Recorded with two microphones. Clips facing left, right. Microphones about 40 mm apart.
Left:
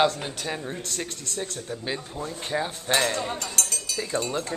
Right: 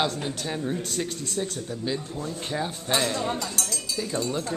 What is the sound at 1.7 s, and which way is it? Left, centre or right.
A man's voice, left.